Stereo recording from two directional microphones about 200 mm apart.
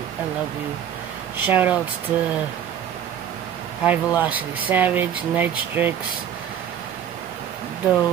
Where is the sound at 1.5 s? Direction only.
10° right (ahead or behind).